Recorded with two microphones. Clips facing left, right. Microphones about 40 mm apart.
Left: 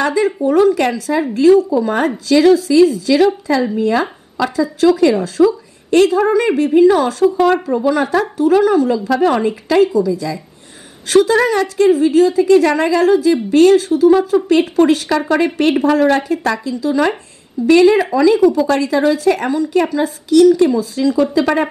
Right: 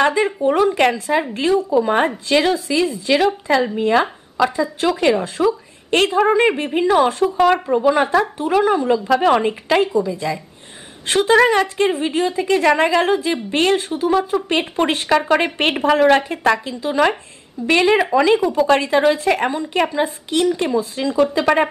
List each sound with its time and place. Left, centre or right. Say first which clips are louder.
0.0 s a woman's voice: left 1 dB; right